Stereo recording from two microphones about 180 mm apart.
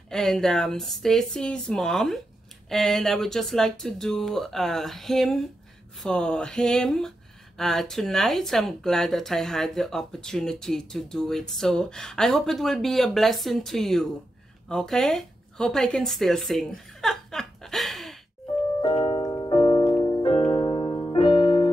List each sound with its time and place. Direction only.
0.1 s speech: centre (ahead or behind)
14.7 s a sound: 5° left (ahead or behind)
18.8 s music: 30° left (ahead or behind)